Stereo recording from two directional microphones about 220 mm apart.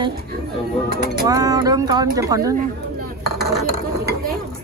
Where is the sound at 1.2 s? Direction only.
15° right (ahead or behind).